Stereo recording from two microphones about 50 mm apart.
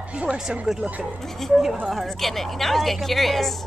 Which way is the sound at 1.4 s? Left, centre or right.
Centre.